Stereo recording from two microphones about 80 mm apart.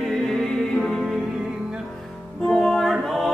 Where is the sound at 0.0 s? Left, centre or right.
Centre.